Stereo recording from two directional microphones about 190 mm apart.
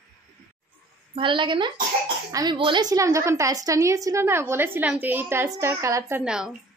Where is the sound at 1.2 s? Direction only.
25° right (ahead or behind).